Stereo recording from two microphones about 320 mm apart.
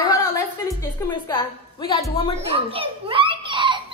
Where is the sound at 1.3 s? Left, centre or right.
Centre.